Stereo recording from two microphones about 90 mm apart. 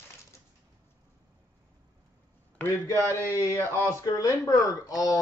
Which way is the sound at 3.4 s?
30° left (ahead or behind).